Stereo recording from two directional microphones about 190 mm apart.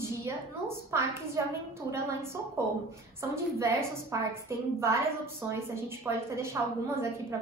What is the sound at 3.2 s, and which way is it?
A woman's voice, 15° right (ahead or behind).